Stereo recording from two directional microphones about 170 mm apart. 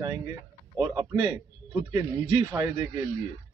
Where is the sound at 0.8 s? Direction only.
25° right (ahead or behind).